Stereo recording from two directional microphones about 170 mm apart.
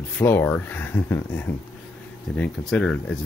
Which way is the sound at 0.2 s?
15° left (ahead or behind).